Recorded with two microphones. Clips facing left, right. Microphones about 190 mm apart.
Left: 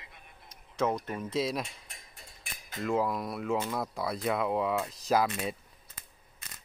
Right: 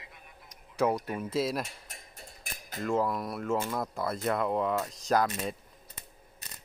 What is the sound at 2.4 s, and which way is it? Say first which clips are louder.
Cutlery: right 2 dB; 40° right (ahead or behind).